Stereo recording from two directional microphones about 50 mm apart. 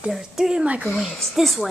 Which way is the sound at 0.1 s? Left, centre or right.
Centre.